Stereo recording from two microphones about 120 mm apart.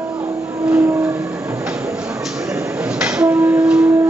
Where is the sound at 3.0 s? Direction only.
10° right (ahead or behind).